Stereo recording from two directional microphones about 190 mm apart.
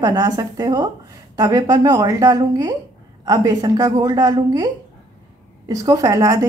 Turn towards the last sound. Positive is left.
turn(degrees=-15)  # may be behind; listen again after turning